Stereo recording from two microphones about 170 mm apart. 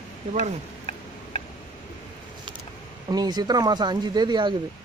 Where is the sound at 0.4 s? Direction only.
40° left (ahead or behind).